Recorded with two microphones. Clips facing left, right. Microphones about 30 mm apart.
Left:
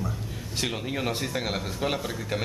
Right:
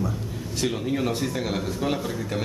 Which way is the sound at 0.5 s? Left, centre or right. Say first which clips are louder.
Right 4 dB; centre.